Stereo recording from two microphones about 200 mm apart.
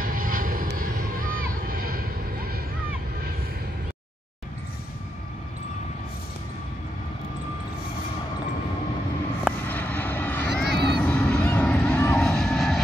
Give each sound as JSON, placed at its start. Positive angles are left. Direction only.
{"t": 0.0, "sound": "vehicle", "side_deg": -45}
{"t": 9.7, "sound": "vehicle", "side_deg": 10}